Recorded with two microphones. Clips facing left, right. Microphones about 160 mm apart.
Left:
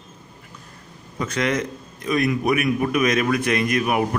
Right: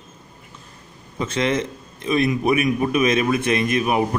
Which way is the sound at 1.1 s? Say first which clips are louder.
Right 1 dB; 25° right (ahead or behind).